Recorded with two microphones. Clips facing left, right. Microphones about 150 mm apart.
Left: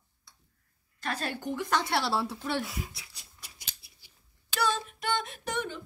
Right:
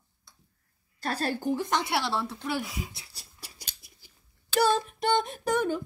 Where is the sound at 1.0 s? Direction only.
35° right (ahead or behind).